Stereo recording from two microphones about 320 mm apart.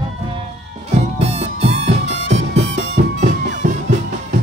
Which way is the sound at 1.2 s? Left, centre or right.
Centre.